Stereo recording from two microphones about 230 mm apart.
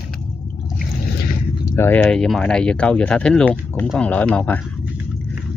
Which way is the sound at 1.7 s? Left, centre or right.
Centre.